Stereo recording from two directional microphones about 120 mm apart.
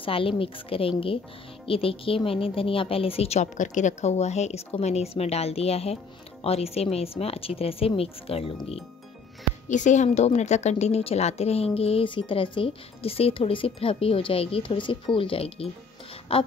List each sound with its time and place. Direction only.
0.0 s a woman's voice: 50° left (ahead or behind)
9.7 s a woman's voice: 90° left; by 15.7 s 55° left (ahead or behind)